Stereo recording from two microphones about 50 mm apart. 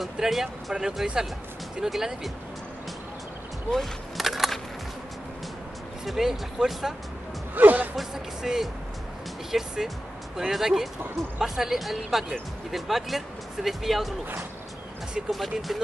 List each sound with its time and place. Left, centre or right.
0.0 s speech: centre
4.2 s a sound: centre
6.0 s speech: centre
7.5 s speech: right
7.9 s speech: centre
15.1 s speech: centre